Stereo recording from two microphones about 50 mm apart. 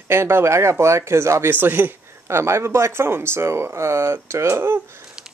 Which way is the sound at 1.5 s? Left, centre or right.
Right.